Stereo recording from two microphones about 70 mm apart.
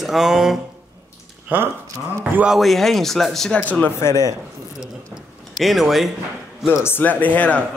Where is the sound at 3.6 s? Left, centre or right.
Left.